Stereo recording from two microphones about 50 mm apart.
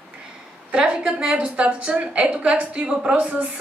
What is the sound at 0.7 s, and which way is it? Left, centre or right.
A woman's voice, centre.